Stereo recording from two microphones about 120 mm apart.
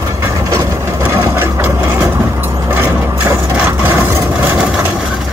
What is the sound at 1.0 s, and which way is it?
Sewing machine, 20° right (ahead or behind).